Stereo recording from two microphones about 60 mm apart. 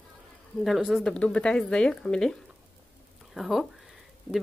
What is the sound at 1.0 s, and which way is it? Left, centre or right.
Speech, centre.